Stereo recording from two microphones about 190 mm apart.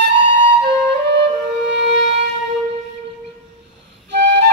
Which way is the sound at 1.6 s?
65° right (ahead or behind).